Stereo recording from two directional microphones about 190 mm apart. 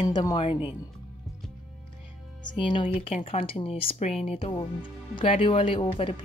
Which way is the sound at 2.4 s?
25° left (ahead or behind).